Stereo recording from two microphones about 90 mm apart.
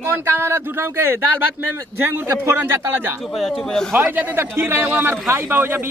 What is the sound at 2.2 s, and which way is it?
Speech, 30° right (ahead or behind).